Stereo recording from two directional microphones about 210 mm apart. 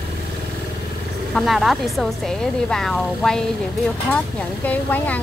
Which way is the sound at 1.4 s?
Centre (ahead or behind).